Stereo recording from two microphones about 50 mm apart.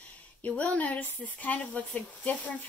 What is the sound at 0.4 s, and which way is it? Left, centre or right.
Speech, left.